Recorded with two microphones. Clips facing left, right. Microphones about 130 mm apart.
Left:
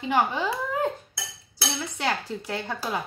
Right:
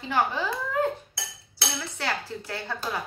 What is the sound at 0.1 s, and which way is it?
Speech, 15° left (ahead or behind).